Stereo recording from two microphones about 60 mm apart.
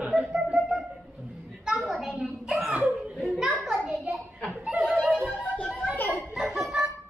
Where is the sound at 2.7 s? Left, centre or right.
Right.